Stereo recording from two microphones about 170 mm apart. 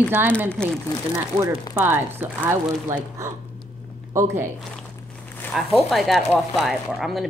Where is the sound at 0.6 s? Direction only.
5° left (ahead or behind).